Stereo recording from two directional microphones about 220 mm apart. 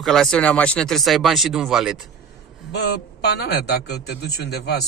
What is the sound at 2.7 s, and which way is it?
A man's voice, 50° left (ahead or behind).